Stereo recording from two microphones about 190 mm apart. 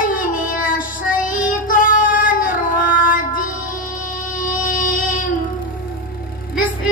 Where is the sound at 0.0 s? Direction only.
45° left (ahead or behind).